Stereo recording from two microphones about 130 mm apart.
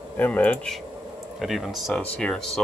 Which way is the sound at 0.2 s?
10° left (ahead or behind).